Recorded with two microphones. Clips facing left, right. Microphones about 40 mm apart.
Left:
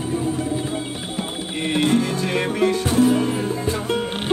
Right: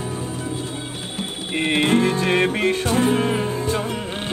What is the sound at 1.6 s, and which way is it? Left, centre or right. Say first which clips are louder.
Music: right 1 dB; right.